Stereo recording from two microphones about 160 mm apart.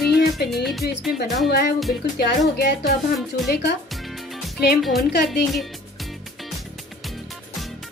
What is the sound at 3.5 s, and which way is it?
Music, 90° left.